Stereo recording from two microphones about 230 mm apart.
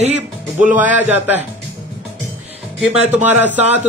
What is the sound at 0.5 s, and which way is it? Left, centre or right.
Speech, centre.